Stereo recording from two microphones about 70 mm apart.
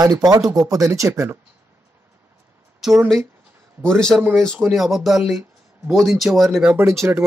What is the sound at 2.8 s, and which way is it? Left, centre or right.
Speech, centre.